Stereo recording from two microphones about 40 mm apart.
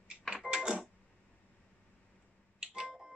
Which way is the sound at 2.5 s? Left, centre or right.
Right.